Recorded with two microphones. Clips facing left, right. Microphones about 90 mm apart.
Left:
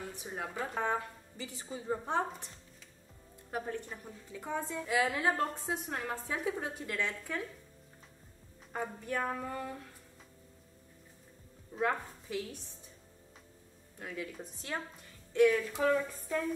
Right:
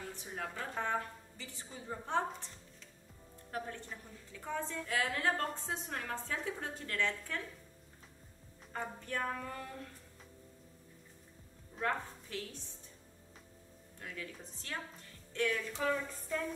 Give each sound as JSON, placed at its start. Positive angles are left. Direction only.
{"t": 0.1, "sound": "a woman's voice", "side_deg": 15}
{"t": 3.5, "sound": "a woman's voice", "side_deg": 15}
{"t": 8.7, "sound": "a woman's voice", "side_deg": 15}
{"t": 11.7, "sound": "speech", "side_deg": 10}
{"t": 13.9, "sound": "a woman's voice", "side_deg": 15}